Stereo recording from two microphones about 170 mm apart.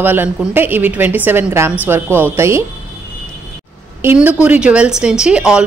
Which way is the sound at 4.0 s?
10° right (ahead or behind).